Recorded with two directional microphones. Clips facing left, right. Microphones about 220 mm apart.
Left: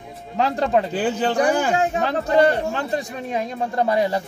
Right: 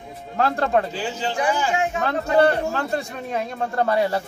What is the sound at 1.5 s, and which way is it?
Speech, 55° left (ahead or behind).